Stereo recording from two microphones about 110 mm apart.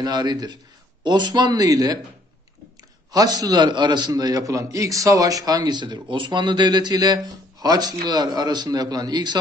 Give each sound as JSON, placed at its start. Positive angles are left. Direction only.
{"t": 0.0, "sound": "a man's voice", "side_deg": -40}
{"t": 3.1, "sound": "a man's voice", "side_deg": -35}